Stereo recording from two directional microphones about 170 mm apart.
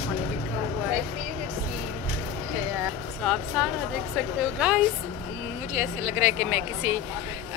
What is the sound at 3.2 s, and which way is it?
A woman's voice, centre (ahead or behind).